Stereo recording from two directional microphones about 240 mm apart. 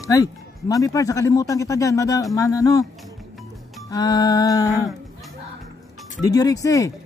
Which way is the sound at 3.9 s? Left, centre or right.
Centre.